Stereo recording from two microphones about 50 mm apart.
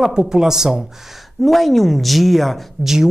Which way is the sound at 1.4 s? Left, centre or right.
Centre.